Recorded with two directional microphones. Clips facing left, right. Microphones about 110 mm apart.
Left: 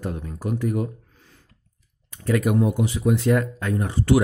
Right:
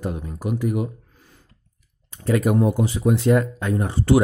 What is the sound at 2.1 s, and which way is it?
Speech, 30° right (ahead or behind).